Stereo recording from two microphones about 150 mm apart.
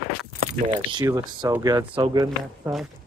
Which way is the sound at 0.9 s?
25° right (ahead or behind).